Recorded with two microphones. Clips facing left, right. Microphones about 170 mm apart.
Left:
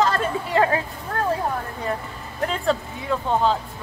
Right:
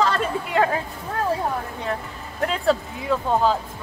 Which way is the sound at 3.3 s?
5° right (ahead or behind).